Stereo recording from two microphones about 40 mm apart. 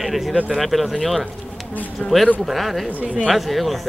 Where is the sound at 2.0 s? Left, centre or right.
Centre.